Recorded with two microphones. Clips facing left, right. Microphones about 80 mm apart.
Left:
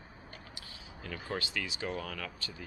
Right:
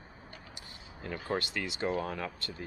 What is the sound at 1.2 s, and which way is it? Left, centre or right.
Speech, right.